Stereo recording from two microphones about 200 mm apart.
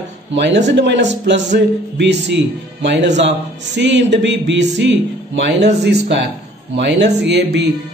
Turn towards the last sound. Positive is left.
turn(degrees=-60)  # may be behind; listen again after turning